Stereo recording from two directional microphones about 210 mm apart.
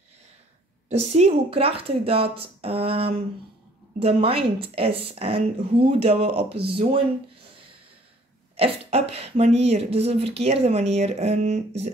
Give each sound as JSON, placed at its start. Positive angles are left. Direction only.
{"t": 0.8, "sound": "a woman's voice", "side_deg": -30}
{"t": 9.1, "sound": "a woman's voice", "side_deg": -30}